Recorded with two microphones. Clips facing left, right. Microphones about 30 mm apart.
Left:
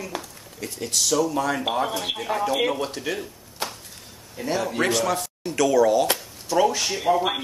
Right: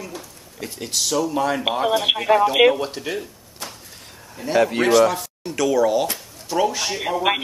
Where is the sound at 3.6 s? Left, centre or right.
Left.